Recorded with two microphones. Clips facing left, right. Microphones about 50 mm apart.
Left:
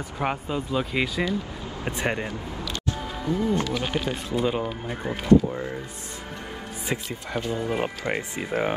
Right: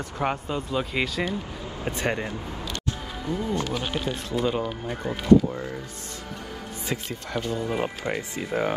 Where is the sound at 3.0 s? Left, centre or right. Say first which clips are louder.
Left 3 dB; centre.